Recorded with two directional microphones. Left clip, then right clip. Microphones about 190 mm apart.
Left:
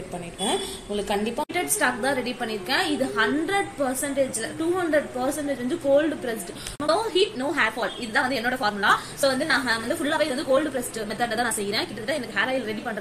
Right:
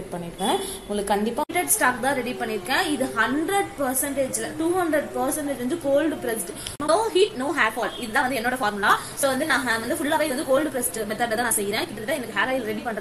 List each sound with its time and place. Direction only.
0.4 s speech: 15° right (ahead or behind)
1.5 s a woman's voice: centre (ahead or behind)